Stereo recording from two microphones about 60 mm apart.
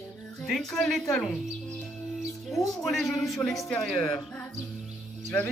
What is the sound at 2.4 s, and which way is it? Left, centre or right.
Speech, centre.